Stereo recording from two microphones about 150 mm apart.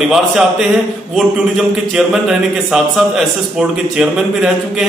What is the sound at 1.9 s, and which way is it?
A man's voice, centre (ahead or behind).